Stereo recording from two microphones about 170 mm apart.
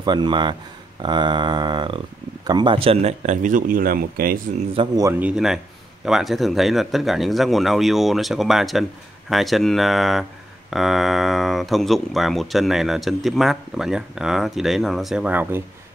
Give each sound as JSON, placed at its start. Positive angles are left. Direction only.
{"t": 0.0, "sound": "speech", "side_deg": -25}
{"t": 4.9, "sound": "speech", "side_deg": -15}